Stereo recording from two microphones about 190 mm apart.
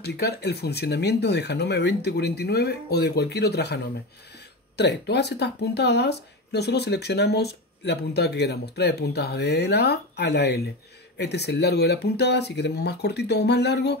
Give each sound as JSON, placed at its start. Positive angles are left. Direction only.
{"t": 0.0, "sound": "speech", "side_deg": 60}